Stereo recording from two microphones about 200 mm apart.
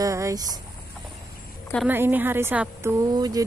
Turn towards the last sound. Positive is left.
turn(degrees=-20)  # may be behind; listen again after turning